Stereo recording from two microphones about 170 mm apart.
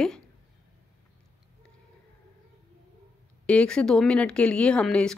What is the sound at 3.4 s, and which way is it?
A woman's voice, 5° left (ahead or behind).